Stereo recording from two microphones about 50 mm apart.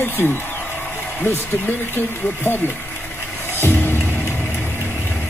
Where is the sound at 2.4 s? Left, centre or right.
Left.